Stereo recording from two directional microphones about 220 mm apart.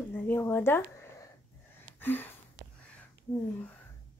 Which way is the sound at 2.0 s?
10° left (ahead or behind).